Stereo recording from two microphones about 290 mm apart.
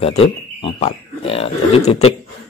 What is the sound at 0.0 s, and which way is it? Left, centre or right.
A man's voice, centre.